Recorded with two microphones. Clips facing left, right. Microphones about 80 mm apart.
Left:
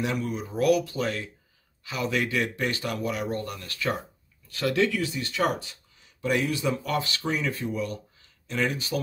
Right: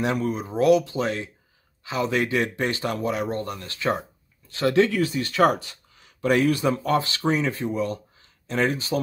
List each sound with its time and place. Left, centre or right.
0.0 s speech: right
6.7 s speech: right